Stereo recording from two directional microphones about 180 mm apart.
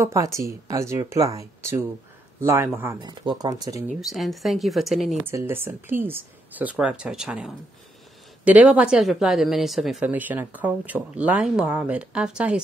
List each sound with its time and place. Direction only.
0.0 s speech: 15° right (ahead or behind)
3.9 s speech: centre (ahead or behind)
5.2 s speech: 15° right (ahead or behind)